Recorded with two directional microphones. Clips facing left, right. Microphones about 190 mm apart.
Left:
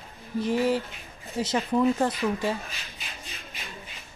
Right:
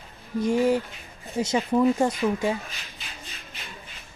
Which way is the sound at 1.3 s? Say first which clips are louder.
Right 2 dB; 10° right (ahead or behind).